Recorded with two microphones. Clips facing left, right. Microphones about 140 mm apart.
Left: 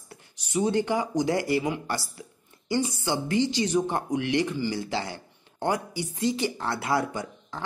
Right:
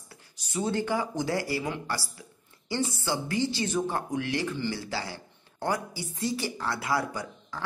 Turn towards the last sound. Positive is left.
turn(degrees=25)  # may be behind; listen again after turning